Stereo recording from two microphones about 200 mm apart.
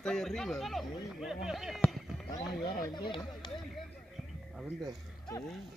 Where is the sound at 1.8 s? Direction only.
Centre (ahead or behind).